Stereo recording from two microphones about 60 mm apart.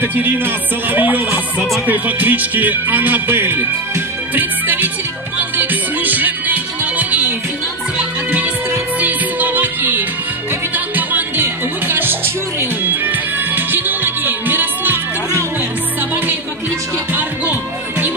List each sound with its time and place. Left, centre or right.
0.0 s music: right
1.9 s speech: right
5.4 s music: right
17.1 s music: right